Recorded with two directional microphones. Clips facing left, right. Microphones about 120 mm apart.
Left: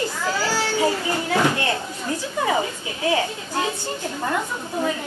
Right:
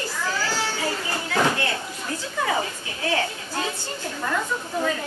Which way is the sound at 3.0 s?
15° left (ahead or behind).